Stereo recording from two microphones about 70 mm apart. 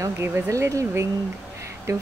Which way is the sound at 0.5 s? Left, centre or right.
Right.